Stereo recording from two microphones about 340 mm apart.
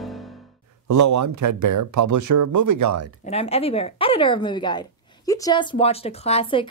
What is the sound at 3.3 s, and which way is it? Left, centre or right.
A woman's voice, centre.